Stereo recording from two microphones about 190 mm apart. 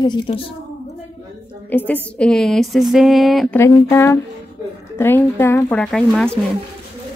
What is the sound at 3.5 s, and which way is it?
Speech, 15° left (ahead or behind).